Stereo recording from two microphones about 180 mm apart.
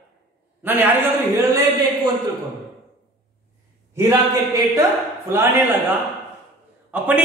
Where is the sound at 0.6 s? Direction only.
10° right (ahead or behind).